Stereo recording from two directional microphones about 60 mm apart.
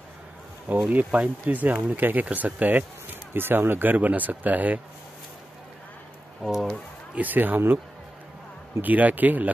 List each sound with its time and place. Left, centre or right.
0.7 s speech: right
6.4 s speech: centre
7.2 s speech: right
8.8 s speech: right